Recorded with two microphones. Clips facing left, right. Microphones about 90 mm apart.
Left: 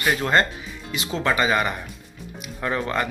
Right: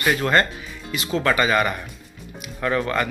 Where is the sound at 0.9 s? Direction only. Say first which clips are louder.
Right 2 dB; 20° left (ahead or behind).